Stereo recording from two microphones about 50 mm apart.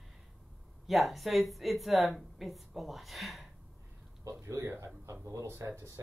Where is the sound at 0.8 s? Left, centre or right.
Centre.